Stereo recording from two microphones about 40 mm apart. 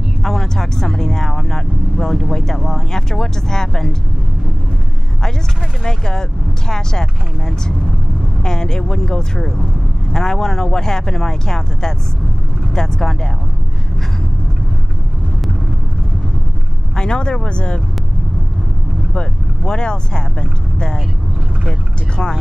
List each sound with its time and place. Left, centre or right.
0.2 s speech: centre
5.9 s speech: centre
16.9 s speech: left
19.1 s speech: left